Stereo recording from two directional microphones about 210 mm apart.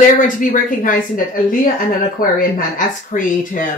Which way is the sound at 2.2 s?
40° left (ahead or behind).